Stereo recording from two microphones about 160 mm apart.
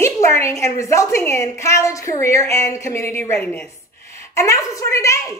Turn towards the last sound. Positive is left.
turn(degrees=20)  # may be behind; listen again after turning